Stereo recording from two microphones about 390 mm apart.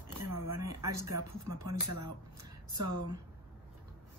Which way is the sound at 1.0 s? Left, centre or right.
Right.